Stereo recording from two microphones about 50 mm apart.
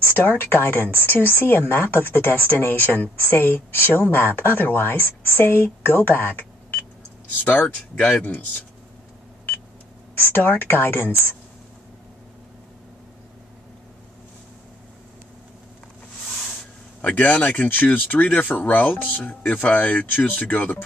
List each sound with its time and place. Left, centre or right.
0.0 s speech: left
8.0 s a man's voice: left
10.1 s speech: left
17.2 s speech: left